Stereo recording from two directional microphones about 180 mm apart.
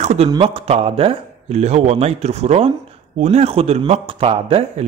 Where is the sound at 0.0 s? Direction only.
40° right (ahead or behind).